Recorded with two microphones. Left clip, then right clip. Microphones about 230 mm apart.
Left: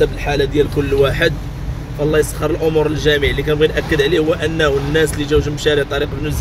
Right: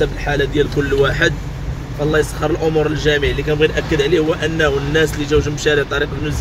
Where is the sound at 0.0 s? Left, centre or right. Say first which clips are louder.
Left 2 dB; centre.